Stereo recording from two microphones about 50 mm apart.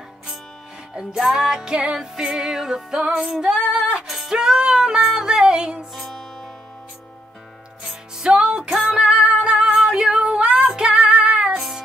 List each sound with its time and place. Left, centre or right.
0.9 s music: centre
5.9 s music: centre
7.8 s music: centre
11.1 s music: right
11.3 s music: centre